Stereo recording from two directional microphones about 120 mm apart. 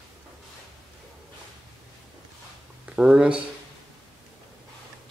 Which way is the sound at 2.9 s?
10° right (ahead or behind).